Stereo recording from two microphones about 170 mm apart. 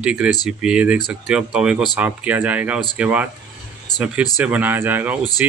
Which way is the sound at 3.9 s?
25° left (ahead or behind).